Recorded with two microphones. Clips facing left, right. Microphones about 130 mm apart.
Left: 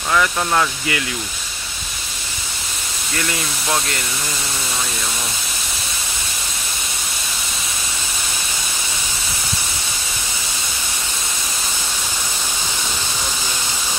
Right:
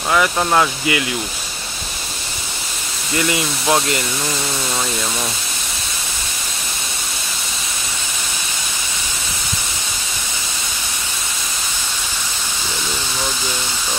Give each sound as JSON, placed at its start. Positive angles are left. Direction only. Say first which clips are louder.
{"t": 0.1, "sound": "speech", "louder": "right 2 dB", "side_deg": -20}